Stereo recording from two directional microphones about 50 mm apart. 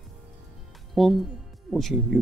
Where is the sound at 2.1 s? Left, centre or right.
Centre.